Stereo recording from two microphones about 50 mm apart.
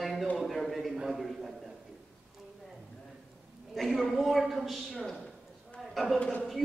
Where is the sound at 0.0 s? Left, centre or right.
Centre.